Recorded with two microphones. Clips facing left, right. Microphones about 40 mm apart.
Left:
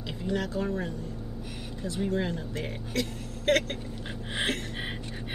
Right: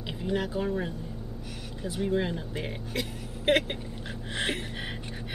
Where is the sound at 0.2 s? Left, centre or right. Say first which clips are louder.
Right 1 dB; centre.